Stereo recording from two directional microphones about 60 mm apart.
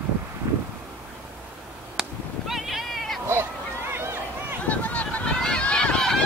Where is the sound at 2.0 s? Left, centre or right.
Centre.